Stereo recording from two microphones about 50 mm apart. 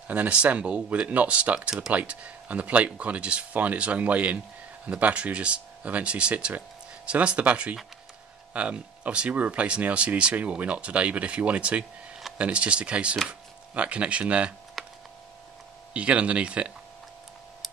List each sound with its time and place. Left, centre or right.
0.1 s speech: right
14.8 s computer keyboard: centre
15.9 s speech: right